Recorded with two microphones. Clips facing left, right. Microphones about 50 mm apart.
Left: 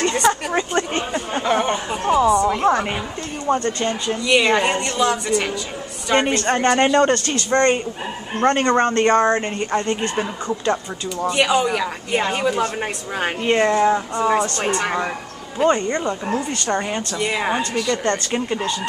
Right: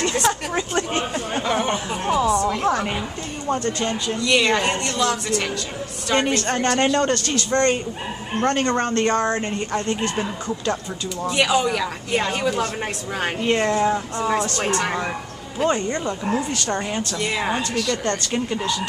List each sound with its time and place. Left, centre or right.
0.0 s a sound: centre
3.5 s a woman's voice: centre
11.2 s a woman's voice: centre